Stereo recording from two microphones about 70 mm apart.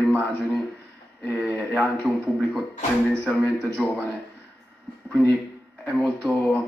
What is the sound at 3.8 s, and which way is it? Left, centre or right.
Speech, centre.